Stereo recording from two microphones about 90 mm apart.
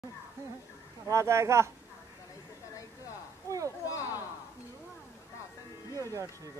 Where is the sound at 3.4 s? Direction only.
35° right (ahead or behind).